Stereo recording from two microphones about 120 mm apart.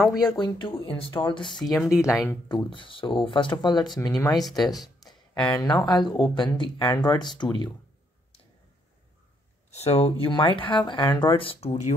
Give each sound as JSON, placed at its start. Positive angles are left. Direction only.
{"t": 0.4, "sound": "speech", "side_deg": 40}
{"t": 1.6, "sound": "speech", "side_deg": 0}
{"t": 2.4, "sound": "speech", "side_deg": 40}
{"t": 4.3, "sound": "speech", "side_deg": 0}
{"t": 5.5, "sound": "speech", "side_deg": 35}
{"t": 9.7, "sound": "speech", "side_deg": 60}